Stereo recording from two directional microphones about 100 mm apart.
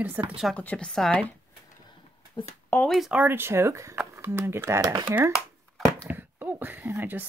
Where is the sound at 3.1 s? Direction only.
20° right (ahead or behind).